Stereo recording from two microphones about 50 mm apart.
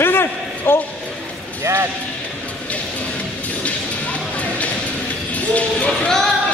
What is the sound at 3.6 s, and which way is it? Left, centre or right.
Music, left.